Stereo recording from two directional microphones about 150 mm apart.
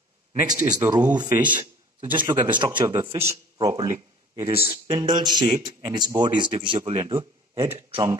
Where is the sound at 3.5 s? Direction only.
25° right (ahead or behind).